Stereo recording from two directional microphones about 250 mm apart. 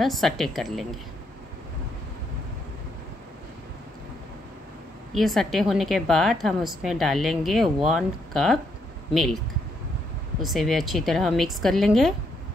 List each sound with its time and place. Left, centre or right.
0.0 s a woman's voice: centre
5.1 s a woman's voice: centre
10.4 s a woman's voice: centre